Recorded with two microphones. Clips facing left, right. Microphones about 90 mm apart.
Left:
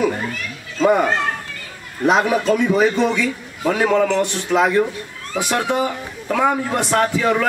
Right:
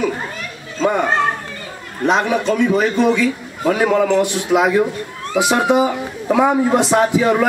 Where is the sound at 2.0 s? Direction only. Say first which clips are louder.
Even; 5° left (ahead or behind).